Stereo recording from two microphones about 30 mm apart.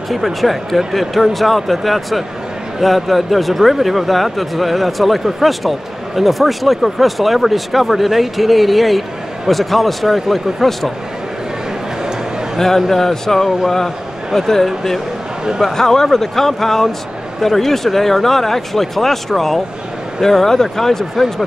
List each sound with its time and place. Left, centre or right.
0.1 s a man's voice: centre
10.0 s speech: centre
10.3 s a man's voice: centre
12.5 s a man's voice: centre
14.3 s a man's voice: centre
15.7 s speech: centre